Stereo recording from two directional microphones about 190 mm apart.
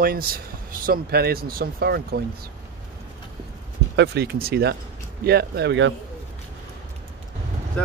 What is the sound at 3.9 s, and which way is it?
Speech, 60° right (ahead or behind).